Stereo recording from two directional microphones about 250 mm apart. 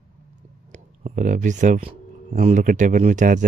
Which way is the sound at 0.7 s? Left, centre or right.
Right.